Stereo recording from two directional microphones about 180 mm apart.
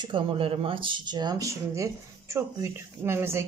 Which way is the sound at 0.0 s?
30° right (ahead or behind).